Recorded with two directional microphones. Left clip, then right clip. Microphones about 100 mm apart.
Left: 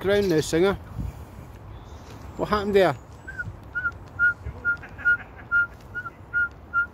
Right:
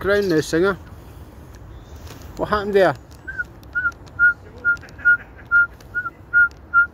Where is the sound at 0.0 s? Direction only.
25° left (ahead or behind).